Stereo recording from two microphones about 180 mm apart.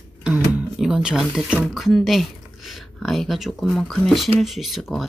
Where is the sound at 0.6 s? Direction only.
5° right (ahead or behind).